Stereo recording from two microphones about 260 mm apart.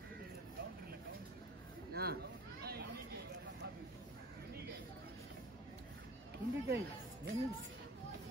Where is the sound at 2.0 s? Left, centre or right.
Right.